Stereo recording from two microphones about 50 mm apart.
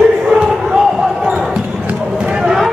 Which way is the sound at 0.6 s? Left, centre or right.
Centre.